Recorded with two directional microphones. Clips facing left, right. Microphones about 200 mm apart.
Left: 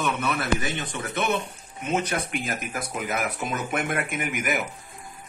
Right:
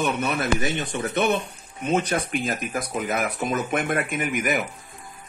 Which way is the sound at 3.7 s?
30° right (ahead or behind).